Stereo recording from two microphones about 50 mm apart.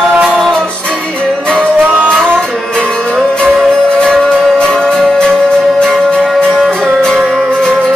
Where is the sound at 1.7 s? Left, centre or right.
Right.